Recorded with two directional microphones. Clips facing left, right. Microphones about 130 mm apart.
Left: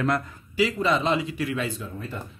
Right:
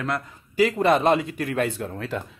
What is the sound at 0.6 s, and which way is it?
Speech, 55° right (ahead or behind).